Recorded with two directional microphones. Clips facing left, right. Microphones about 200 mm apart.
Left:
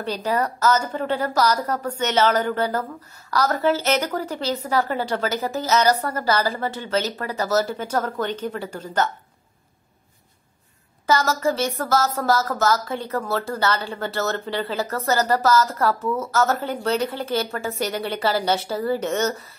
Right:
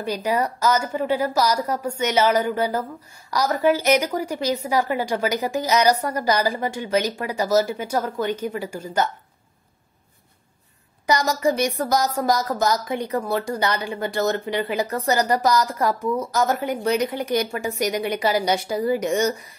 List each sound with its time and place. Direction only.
0.0 s a woman's voice: 10° right (ahead or behind)
11.1 s a woman's voice: 15° right (ahead or behind)